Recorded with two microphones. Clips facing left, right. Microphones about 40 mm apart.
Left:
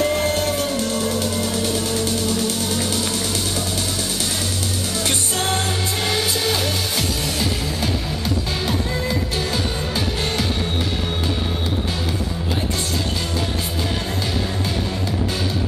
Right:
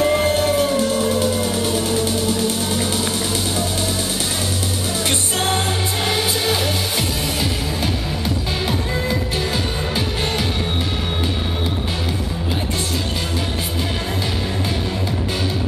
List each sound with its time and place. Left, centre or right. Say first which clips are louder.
0.0 s music: right 3 dB; centre
6.0 s music: right 1 dB; centre
9.5 s music: right 1 dB; right